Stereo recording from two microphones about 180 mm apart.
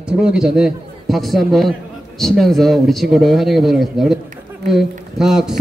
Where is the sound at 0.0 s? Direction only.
5° right (ahead or behind).